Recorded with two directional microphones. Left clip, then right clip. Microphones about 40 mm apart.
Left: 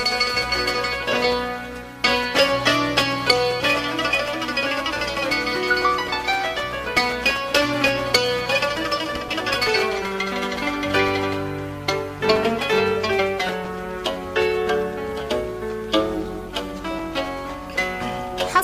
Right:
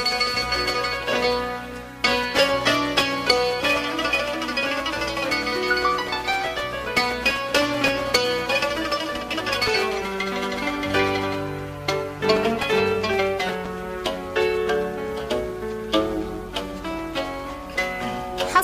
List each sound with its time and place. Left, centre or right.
0.0 s music: left
11.9 s zither: left
14.0 s music: left